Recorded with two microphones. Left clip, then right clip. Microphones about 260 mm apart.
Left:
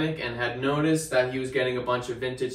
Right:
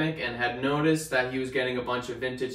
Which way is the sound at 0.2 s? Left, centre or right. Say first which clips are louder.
Even; centre.